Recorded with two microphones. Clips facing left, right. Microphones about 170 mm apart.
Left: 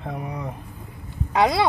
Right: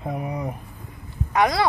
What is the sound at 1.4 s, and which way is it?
Speech, 25° left (ahead or behind).